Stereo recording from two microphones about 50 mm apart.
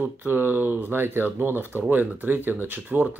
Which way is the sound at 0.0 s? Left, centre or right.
Right.